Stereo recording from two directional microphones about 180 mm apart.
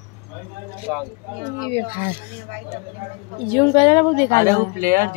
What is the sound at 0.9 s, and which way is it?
Speech, 5° right (ahead or behind).